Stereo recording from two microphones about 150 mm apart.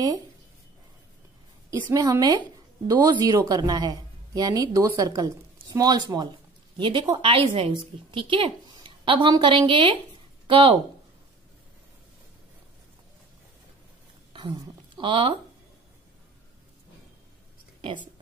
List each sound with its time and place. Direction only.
1.7 s a woman's voice: 20° right (ahead or behind)
15.0 s a woman's voice: 35° right (ahead or behind)